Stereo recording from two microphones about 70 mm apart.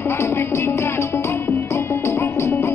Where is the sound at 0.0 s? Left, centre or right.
Left.